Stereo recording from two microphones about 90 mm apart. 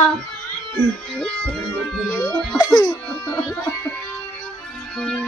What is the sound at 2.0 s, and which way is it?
Music, centre (ahead or behind).